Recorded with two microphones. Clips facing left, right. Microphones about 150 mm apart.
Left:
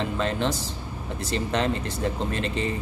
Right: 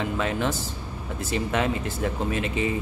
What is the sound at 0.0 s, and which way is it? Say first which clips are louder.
Speech: even; 10° right (ahead or behind).